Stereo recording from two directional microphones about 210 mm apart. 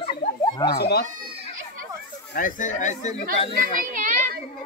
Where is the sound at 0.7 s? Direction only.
50° left (ahead or behind).